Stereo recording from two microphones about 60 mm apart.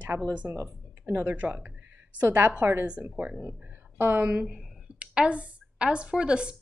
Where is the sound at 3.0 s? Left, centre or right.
Right.